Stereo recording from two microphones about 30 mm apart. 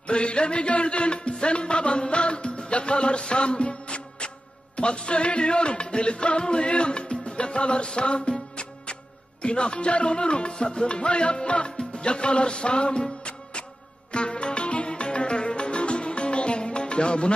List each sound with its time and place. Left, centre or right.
0.0 s a man's voice: left
4.7 s music: left